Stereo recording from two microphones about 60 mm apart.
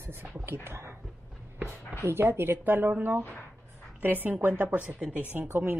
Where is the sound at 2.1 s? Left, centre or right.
Right.